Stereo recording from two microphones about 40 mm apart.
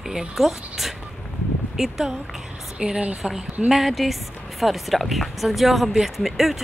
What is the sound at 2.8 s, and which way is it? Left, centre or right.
Speech, right.